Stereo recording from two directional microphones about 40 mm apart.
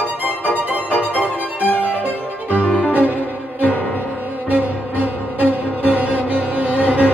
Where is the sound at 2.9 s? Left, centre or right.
Right.